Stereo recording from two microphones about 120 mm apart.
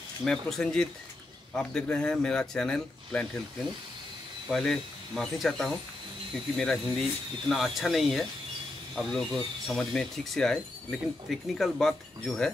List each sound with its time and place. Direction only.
0.2 s speech: centre (ahead or behind)
4.5 s speech: centre (ahead or behind)